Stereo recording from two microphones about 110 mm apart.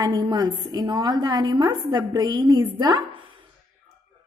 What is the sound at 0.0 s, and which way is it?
A woman's voice, 40° right (ahead or behind).